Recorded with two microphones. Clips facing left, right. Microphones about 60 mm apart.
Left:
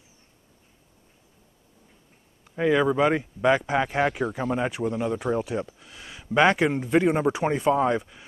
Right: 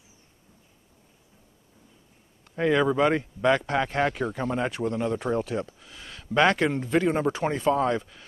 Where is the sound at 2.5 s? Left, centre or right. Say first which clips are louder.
Left 1 dB; centre.